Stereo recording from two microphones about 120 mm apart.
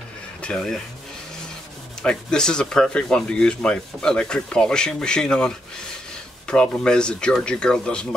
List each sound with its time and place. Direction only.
0.4 s speech: 5° left (ahead or behind)
2.0 s speech: 5° left (ahead or behind)